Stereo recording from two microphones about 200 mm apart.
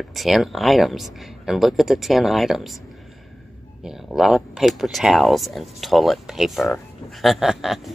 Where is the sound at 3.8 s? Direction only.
Centre (ahead or behind).